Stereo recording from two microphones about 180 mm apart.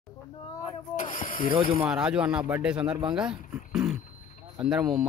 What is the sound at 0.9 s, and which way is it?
Speech, 45° left (ahead or behind).